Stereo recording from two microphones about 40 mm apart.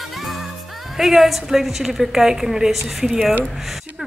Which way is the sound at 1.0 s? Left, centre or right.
Centre.